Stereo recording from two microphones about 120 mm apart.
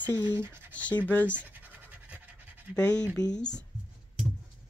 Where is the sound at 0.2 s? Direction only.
15° right (ahead or behind).